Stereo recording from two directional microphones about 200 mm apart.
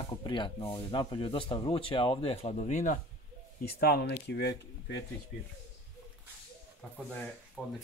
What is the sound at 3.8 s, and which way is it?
Speech, 50° left (ahead or behind).